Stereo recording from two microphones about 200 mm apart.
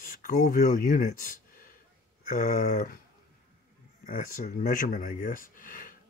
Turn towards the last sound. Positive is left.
turn(degrees=40)  # may be behind; listen again after turning